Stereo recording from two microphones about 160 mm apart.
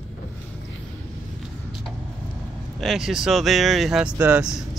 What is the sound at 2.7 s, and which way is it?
Speech, centre (ahead or behind).